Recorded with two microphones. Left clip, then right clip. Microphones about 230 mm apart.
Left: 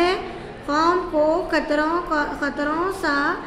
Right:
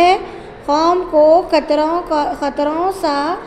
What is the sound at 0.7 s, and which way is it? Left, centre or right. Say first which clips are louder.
A woman's voice: right 6 dB; centre.